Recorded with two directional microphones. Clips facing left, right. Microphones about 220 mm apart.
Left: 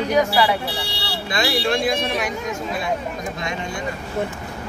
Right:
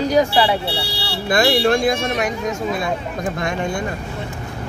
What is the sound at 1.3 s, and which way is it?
Speech, 50° right (ahead or behind).